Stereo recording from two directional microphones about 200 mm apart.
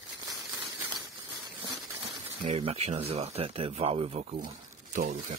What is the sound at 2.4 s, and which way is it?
Speech, 30° right (ahead or behind).